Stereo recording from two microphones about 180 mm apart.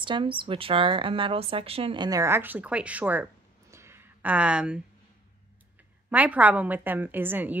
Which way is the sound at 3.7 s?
15° right (ahead or behind).